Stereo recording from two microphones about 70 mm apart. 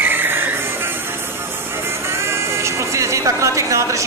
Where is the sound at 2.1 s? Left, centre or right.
Right.